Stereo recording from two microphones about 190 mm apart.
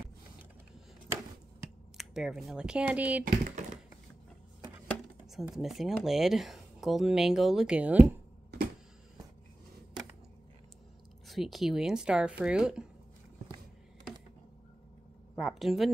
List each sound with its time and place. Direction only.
2.0 s speech: centre (ahead or behind)
3.3 s speech: 40° right (ahead or behind)
5.3 s speech: centre (ahead or behind)
11.2 s speech: centre (ahead or behind)
15.3 s a sound: centre (ahead or behind)